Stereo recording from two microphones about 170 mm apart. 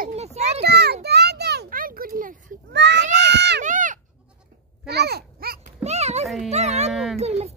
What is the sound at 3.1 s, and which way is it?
Crowd, 85° right.